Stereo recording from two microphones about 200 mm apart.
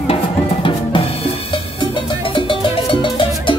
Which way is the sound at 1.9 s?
25° left (ahead or behind).